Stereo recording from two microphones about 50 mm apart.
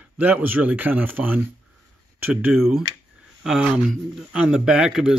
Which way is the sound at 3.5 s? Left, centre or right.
Centre.